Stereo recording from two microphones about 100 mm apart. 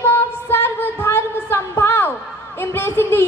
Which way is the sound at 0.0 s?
20° left (ahead or behind).